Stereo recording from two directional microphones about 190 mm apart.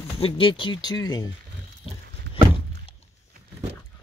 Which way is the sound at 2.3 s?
65° right (ahead or behind).